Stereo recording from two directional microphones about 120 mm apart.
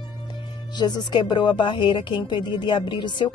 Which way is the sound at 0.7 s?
40° left (ahead or behind).